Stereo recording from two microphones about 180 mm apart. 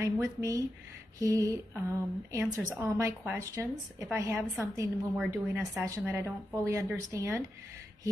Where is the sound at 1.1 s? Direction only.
20° right (ahead or behind).